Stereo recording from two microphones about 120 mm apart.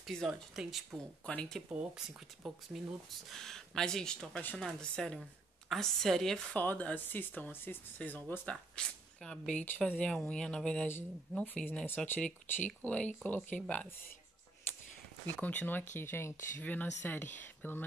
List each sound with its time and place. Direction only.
0.0 s speech: centre (ahead or behind)
1.3 s speech: 10° left (ahead or behind)
1.7 s speech: 10° right (ahead or behind); by 13.9 s 10° left (ahead or behind)
15.2 s speech: 15° left (ahead or behind)